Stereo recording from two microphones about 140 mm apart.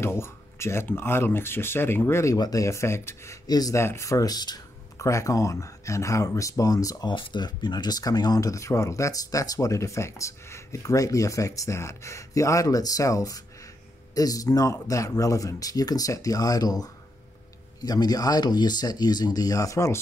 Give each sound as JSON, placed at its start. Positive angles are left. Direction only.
{"t": 0.0, "sound": "speech", "side_deg": 20}